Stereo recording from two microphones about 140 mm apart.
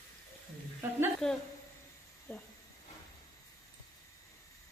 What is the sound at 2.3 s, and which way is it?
Speech, 15° left (ahead or behind).